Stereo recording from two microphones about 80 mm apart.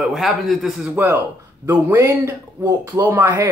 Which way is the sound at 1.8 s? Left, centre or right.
Right.